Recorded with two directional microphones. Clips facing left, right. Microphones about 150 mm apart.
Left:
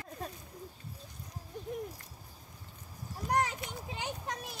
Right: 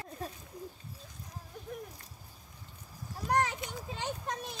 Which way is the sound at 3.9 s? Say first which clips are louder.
Right 2 dB; 15° left (ahead or behind).